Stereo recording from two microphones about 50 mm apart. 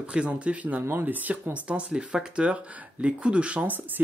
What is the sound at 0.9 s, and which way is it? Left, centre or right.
Speech, right.